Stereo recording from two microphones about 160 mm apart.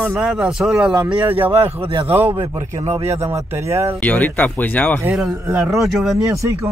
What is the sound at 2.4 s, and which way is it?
Speech, 40° right (ahead or behind).